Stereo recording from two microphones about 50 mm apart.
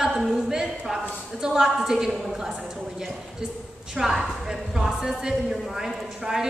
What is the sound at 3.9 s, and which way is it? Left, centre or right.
A woman's voice, centre.